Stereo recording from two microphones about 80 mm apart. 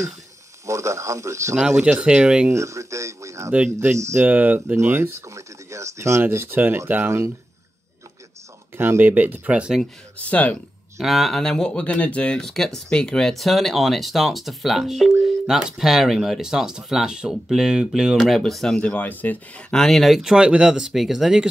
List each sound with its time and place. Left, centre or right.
0.7 s speech: right
1.8 s speech: centre
2.4 s a sound: right
3.5 s speech: right
3.9 s speech: right
4.3 s speech: right
5.3 s a sound: right
6.2 s speech: right
8.7 s speech: right
10.1 s speech: centre
11.0 s speech: centre
18.2 s speech: centre; by 19.4 s left
19.7 s speech: centre